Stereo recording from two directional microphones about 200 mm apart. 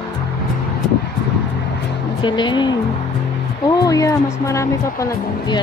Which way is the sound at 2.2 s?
25° left (ahead or behind).